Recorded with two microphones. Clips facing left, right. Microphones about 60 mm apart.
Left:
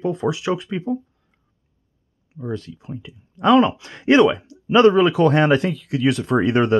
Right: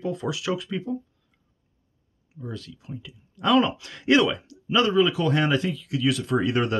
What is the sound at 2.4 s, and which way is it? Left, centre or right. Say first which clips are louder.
Speech: left 8 dB; left.